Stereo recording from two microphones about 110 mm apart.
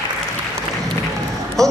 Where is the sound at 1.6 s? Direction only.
5° left (ahead or behind).